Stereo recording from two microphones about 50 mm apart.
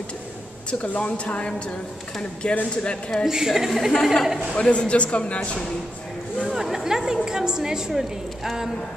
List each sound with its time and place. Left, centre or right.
0.9 s speech: left
3.3 s a woman's voice: centre
3.9 s a woman's voice: centre
4.6 s speech: left
6.5 s a woman's voice: centre